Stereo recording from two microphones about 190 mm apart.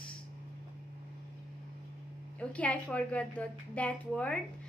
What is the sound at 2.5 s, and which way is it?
A woman's voice, 5° left (ahead or behind).